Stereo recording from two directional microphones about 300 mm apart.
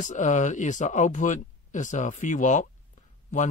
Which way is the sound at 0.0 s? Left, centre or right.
Left.